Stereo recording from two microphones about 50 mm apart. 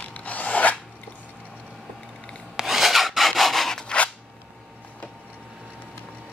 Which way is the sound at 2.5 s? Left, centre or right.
Centre.